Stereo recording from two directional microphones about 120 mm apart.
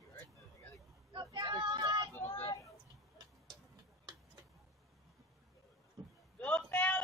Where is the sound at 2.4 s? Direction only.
30° left (ahead or behind).